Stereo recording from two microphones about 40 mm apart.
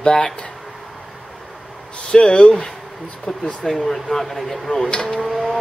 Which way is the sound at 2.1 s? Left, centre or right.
Left.